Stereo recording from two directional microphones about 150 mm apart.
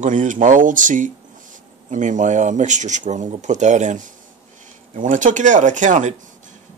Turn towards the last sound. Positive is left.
turn(degrees=-55)  # may be behind; listen again after turning